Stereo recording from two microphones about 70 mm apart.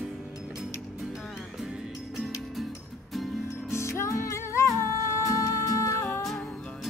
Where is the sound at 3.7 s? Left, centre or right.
Left.